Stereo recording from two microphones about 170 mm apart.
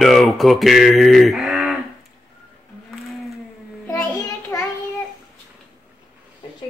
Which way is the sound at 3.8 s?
15° left (ahead or behind).